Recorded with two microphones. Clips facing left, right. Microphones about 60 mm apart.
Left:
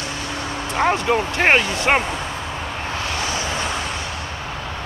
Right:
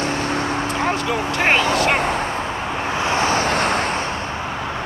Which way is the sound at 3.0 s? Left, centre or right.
Right.